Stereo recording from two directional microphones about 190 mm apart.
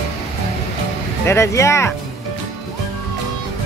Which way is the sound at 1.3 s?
15° left (ahead or behind).